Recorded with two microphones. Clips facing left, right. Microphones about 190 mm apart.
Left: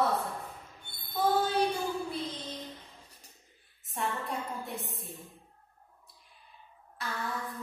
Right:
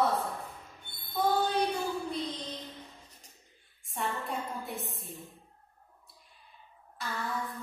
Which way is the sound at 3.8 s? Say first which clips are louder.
Even; centre (ahead or behind).